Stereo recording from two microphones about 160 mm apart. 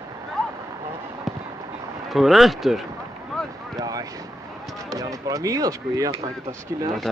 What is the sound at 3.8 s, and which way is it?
Vehicle, 20° right (ahead or behind).